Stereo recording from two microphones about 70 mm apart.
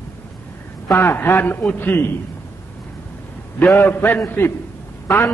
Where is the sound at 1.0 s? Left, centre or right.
Left.